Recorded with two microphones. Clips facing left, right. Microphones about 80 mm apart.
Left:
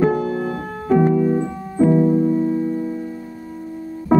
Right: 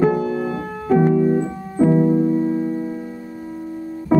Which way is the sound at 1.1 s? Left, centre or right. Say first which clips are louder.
Right 1 dB; right.